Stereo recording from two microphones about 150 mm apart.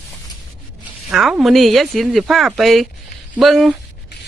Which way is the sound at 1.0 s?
5° right (ahead or behind).